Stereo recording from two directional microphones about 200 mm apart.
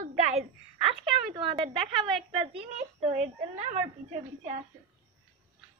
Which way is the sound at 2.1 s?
25° right (ahead or behind).